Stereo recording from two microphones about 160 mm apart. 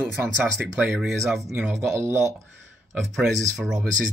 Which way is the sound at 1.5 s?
15° right (ahead or behind).